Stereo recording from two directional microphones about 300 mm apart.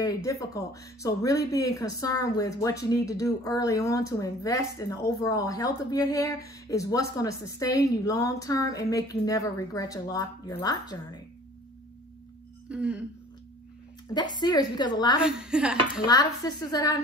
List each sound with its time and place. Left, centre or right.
0.0 s speech: centre
12.6 s a sound: centre
14.3 s speech: centre
15.1 s speech: centre
16.1 s speech: centre